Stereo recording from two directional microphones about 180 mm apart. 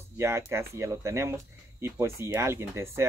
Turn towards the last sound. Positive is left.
turn(degrees=-15)  # may be behind; listen again after turning